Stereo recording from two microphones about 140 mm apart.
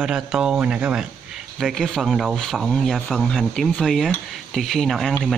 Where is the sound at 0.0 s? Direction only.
5° right (ahead or behind).